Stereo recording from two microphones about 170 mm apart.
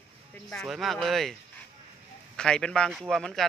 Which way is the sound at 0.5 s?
Centre (ahead or behind).